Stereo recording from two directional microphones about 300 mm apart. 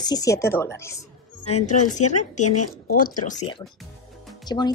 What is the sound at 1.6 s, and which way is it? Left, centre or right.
Speech, left.